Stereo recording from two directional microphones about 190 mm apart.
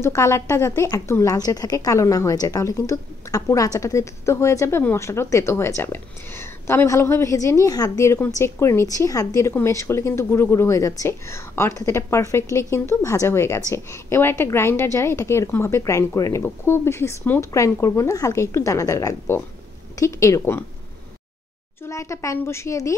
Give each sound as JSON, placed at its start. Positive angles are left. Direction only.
{"t": 0.0, "sound": "a woman's voice", "side_deg": 15}
{"t": 21.8, "sound": "a woman's voice", "side_deg": 15}